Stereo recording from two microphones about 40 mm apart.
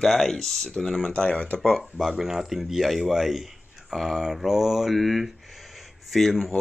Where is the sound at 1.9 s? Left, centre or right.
Centre.